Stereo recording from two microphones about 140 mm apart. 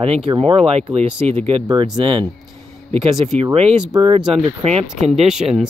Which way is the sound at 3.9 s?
35° right (ahead or behind).